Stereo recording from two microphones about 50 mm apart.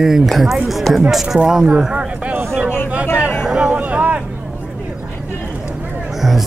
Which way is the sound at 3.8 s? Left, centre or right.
Right.